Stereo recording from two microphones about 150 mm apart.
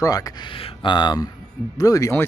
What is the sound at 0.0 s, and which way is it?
Speech, 25° left (ahead or behind).